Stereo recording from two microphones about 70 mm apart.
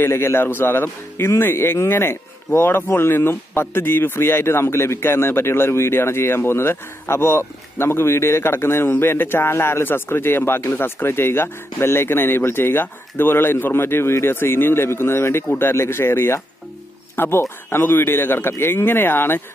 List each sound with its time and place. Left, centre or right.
0.0 s speech: left